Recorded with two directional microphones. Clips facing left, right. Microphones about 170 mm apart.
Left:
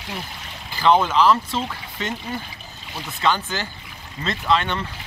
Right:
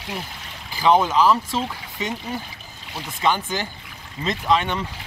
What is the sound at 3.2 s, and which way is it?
Speech, 15° right (ahead or behind).